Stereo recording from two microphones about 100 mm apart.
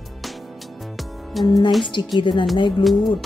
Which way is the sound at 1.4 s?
45° left (ahead or behind).